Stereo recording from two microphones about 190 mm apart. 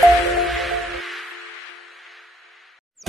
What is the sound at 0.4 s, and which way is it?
Music, centre (ahead or behind).